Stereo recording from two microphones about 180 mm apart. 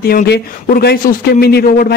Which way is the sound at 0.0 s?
60° left (ahead or behind).